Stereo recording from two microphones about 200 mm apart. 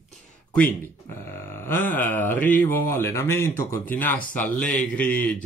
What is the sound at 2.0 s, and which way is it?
Speech, 10° left (ahead or behind).